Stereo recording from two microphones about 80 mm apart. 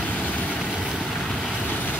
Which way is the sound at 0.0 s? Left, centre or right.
Centre.